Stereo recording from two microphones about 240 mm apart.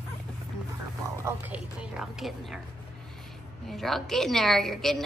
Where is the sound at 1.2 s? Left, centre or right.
Centre.